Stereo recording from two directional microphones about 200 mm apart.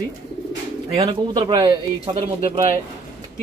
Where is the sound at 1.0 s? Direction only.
20° right (ahead or behind).